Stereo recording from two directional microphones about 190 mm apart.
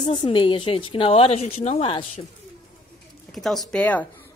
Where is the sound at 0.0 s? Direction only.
25° left (ahead or behind).